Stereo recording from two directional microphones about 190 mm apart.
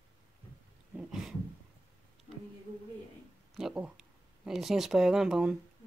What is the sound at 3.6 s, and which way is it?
Speech, 5° right (ahead or behind).